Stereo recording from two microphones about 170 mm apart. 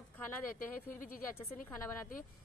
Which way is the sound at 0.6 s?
55° left (ahead or behind).